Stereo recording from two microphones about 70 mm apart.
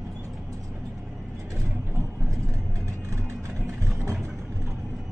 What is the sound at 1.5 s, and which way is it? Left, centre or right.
Vehicle, right.